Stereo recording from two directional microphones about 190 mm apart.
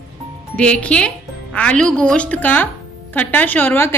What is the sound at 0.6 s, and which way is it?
A woman's voice, 5° left (ahead or behind).